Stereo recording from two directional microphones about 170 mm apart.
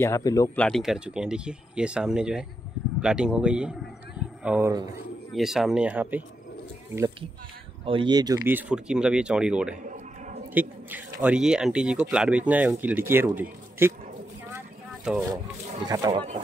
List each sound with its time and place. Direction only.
0.0 s speech: 20° left (ahead or behind)
0.6 s speech: 5° left (ahead or behind)
4.2 s a sound: 5° right (ahead or behind)
5.3 s speech: centre (ahead or behind)
7.8 s speech: 30° right (ahead or behind)
8.5 s speech: 10° right (ahead or behind)
9.8 s a sound: 45° right (ahead or behind)
10.5 s a man's voice: 10° right (ahead or behind)
15.1 s speech: 5° right (ahead or behind)
15.8 s speech: 25° right (ahead or behind)